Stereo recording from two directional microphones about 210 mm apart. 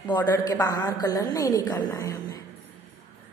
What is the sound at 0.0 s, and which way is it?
A woman's voice, 20° left (ahead or behind).